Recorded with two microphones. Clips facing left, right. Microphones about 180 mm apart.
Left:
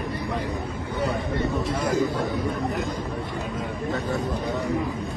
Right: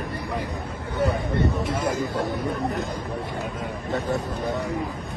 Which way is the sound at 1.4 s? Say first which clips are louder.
Right 2 dB; 20° right (ahead or behind).